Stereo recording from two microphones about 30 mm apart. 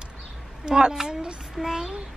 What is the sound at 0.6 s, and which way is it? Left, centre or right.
Speech, right.